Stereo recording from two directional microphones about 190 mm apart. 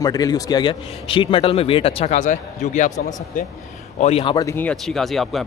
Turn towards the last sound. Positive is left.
turn(degrees=0)  # may be behind; listen again after turning